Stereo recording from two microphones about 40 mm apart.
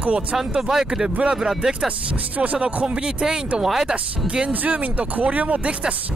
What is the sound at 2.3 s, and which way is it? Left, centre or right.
Speech, right.